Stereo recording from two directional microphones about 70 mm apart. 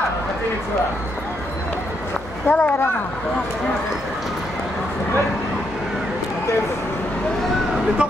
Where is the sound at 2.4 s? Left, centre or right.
Left.